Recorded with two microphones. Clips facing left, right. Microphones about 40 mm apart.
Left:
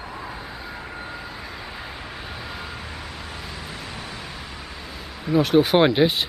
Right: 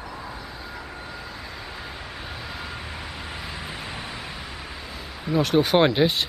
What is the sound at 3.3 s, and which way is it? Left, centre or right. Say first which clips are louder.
Vehicle: right 1 dB; centre.